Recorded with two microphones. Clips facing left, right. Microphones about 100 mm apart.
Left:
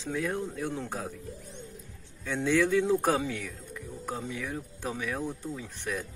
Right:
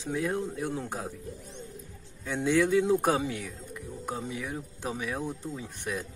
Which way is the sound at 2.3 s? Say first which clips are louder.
Right 1 dB; 20° right (ahead or behind).